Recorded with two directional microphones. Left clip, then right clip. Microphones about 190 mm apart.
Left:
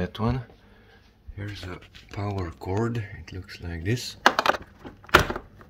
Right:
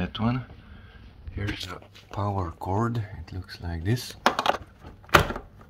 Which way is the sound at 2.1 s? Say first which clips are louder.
Right 3 dB; 15° right (ahead or behind).